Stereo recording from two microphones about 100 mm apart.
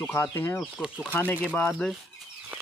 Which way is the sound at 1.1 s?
15° left (ahead or behind).